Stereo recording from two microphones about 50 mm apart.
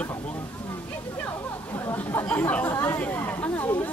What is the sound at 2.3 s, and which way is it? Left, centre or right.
Speech, left.